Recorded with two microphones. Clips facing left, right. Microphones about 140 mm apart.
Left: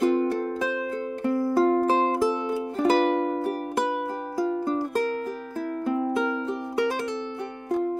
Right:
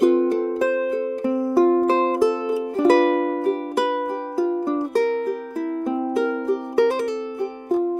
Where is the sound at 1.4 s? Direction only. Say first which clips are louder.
Right 5 dB; 5° right (ahead or behind).